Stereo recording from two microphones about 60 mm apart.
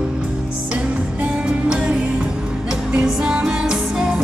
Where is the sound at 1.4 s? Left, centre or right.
Centre.